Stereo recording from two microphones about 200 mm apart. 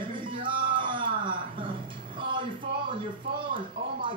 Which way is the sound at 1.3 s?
25° right (ahead or behind).